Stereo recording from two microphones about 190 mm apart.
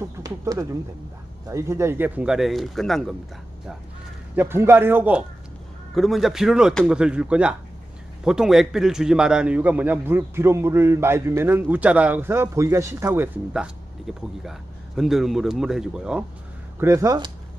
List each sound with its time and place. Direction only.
0.0 s speech: 20° right (ahead or behind); by 3.2 s centre (ahead or behind)
4.4 s a man's voice: 10° right (ahead or behind)
16.8 s a man's voice: 15° right (ahead or behind)